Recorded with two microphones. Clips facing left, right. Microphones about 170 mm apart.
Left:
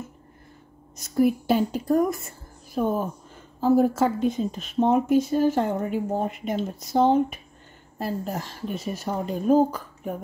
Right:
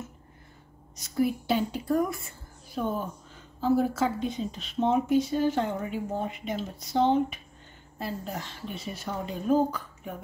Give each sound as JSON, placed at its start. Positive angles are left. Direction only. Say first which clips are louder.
{"t": 0.9, "sound": "a woman's voice", "louder": "left 6 dB", "side_deg": 50}